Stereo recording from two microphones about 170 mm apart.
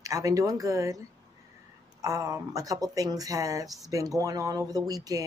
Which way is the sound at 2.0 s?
20° right (ahead or behind).